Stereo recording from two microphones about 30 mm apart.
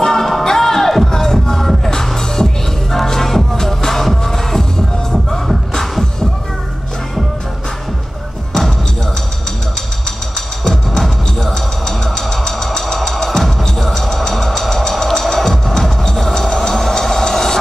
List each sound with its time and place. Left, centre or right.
0.0 s music: centre
11.3 s music: centre
13.1 s drum: centre
13.6 s music: centre